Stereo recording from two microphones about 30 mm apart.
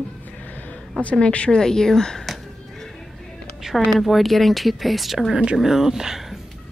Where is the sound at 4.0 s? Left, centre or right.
Centre.